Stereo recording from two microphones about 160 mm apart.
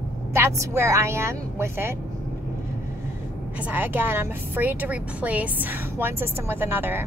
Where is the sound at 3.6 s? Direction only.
10° right (ahead or behind).